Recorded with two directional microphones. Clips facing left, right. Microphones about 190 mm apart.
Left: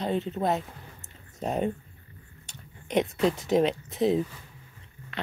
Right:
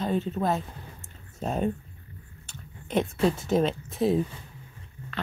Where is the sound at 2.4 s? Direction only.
15° left (ahead or behind).